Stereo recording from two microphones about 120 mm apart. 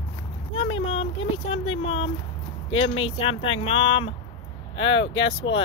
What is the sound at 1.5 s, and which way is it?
Speech, 50° left (ahead or behind).